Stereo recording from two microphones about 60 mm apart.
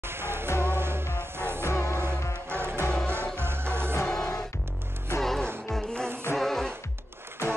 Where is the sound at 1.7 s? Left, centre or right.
Left.